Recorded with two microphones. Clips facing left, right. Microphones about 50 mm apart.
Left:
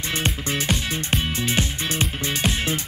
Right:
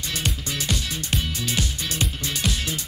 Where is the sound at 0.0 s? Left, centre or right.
Left.